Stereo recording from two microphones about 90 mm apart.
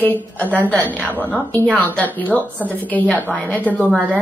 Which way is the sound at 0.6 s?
15° left (ahead or behind).